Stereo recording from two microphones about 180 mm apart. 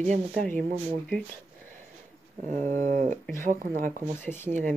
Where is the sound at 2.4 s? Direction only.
40° right (ahead or behind).